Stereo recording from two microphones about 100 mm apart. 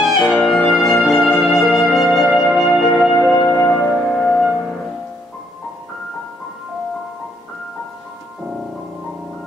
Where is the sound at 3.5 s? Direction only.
10° left (ahead or behind).